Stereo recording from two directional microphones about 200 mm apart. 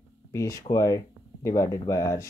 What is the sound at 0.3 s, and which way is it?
Speech, 15° left (ahead or behind).